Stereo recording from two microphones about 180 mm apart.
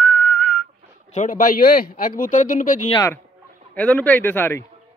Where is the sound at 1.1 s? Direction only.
45° left (ahead or behind).